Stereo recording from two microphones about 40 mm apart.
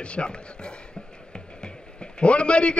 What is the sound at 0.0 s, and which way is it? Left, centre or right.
Speech, left.